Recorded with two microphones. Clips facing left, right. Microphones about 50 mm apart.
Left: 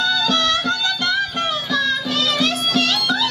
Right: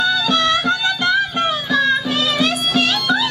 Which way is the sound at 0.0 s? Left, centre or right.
Centre.